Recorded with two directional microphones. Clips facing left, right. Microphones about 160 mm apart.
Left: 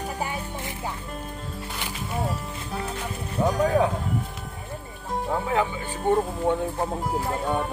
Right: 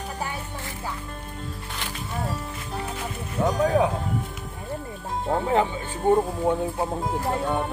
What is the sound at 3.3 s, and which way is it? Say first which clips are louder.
Speech: even; 10° left (ahead or behind).